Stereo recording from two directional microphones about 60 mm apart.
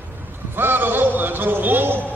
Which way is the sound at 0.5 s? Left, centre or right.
Right.